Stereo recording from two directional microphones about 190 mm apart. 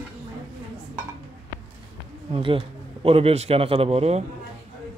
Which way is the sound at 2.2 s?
25° right (ahead or behind).